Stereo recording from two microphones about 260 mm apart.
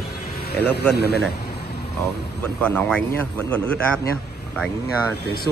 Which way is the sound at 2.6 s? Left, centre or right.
Centre.